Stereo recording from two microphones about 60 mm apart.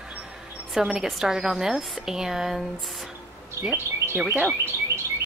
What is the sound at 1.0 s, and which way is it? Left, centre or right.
A woman's voice, centre.